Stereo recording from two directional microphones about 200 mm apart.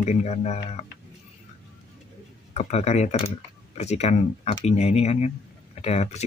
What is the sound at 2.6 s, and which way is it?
Speech, 35° left (ahead or behind).